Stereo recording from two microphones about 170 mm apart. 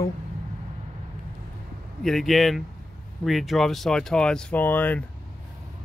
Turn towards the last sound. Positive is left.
turn(degrees=10)  # may be behind; listen again after turning